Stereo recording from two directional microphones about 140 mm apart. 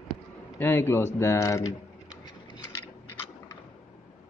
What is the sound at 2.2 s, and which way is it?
Vehicle, 30° left (ahead or behind).